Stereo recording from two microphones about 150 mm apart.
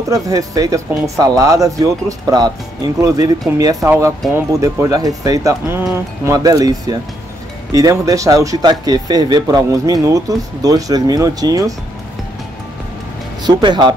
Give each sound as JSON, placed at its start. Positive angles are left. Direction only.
{"t": 0.1, "sound": "speech", "side_deg": -25}
{"t": 13.4, "sound": "speech", "side_deg": -30}